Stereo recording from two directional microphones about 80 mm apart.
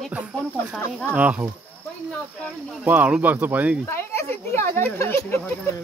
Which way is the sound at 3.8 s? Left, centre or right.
Left.